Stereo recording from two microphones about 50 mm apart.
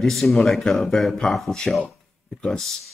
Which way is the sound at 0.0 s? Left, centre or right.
Centre.